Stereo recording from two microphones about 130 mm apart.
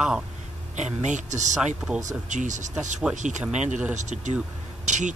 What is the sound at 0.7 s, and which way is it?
Speech, 65° right (ahead or behind).